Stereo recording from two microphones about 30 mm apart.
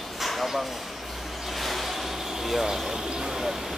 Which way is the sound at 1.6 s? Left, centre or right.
Centre.